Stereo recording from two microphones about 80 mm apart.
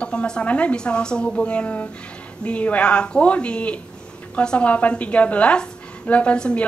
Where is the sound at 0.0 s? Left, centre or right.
Centre.